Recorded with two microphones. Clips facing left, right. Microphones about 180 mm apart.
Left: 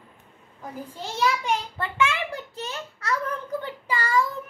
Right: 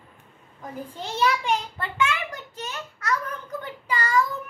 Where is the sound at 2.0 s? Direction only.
30° left (ahead or behind).